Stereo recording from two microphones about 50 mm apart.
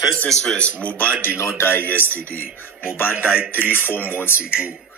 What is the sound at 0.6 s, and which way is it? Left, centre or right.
Speech, left.